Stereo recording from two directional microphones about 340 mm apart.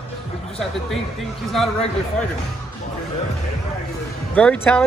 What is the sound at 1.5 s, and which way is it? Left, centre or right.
Speech, centre.